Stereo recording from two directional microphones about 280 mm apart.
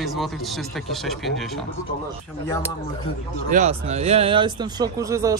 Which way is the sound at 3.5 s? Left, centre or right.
Right.